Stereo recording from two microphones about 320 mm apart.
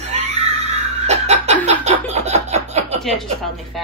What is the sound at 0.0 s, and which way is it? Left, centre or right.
Neigh, centre.